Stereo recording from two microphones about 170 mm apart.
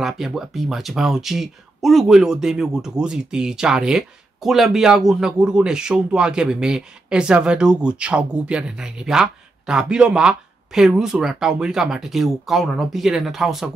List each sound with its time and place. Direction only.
0.0 s speech: centre (ahead or behind)